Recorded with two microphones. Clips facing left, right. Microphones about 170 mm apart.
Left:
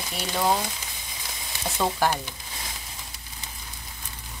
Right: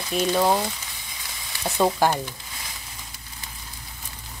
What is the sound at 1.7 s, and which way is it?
Speech, 15° right (ahead or behind).